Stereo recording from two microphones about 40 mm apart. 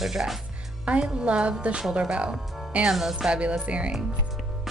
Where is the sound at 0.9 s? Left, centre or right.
Right.